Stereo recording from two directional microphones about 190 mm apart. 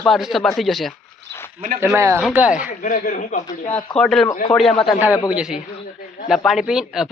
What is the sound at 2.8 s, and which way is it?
Speech, 45° left (ahead or behind).